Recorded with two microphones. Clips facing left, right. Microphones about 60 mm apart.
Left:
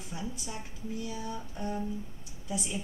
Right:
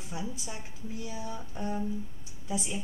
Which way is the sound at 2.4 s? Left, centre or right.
Right.